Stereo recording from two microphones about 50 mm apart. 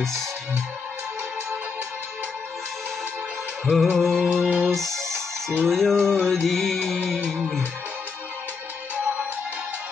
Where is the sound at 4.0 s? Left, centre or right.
Centre.